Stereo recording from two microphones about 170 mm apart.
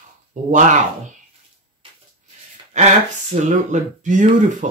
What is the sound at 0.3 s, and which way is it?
Speech, 50° right (ahead or behind).